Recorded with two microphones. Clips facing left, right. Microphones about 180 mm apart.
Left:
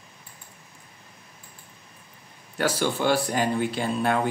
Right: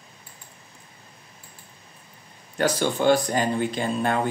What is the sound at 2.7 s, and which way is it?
Speech, 15° right (ahead or behind).